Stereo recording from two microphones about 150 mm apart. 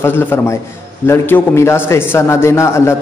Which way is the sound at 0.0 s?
15° left (ahead or behind).